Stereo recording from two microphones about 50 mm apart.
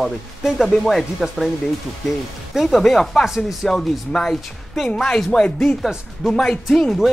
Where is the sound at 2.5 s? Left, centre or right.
Centre.